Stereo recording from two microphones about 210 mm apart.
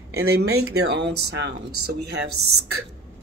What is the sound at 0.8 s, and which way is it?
Speech, 55° right (ahead or behind).